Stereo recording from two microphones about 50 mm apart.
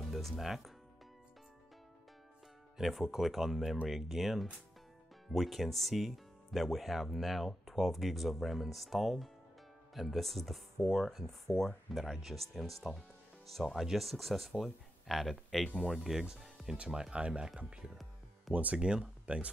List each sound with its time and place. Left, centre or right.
0.3 s speech: centre
2.8 s speech: centre
16.3 s music: centre
16.7 s speech: right
18.5 s speech: right
18.8 s speech: centre